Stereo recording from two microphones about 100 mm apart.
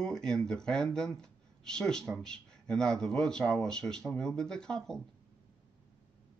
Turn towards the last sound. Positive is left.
turn(degrees=5)  # may be behind; listen again after turning